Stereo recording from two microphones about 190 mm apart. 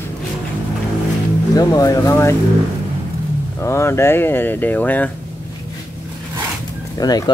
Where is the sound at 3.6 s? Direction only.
15° left (ahead or behind).